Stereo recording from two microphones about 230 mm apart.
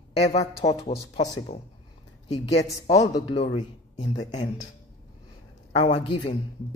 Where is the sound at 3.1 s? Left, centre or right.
Left.